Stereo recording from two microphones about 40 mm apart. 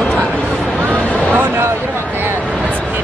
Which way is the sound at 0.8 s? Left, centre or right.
Right.